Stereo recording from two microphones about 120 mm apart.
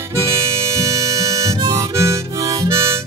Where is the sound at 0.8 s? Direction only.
25° right (ahead or behind).